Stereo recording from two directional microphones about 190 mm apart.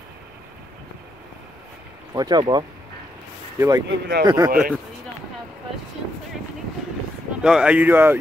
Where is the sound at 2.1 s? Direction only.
20° right (ahead or behind).